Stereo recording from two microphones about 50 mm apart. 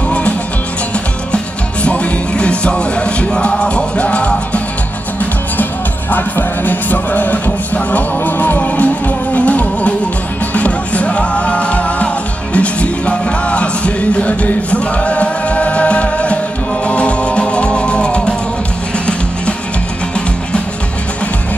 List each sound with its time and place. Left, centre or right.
1.3 s music: left
5.6 s music: left